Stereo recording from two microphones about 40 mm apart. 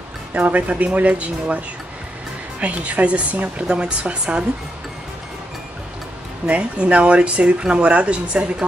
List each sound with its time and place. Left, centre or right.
0.3 s speech: right
2.6 s speech: right
3.6 s a woman's voice: right
6.4 s speech: right